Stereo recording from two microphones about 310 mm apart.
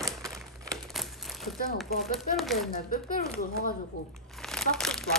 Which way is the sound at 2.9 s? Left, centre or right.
Left.